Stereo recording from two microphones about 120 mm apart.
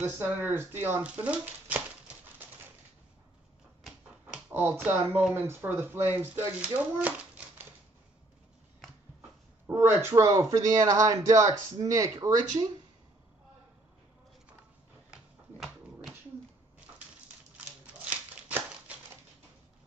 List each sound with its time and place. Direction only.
0.0 s speech: 15° right (ahead or behind)
4.5 s speech: 15° right (ahead or behind)
9.7 s speech: 20° right (ahead or behind)
18.1 s a sound: 10° right (ahead or behind)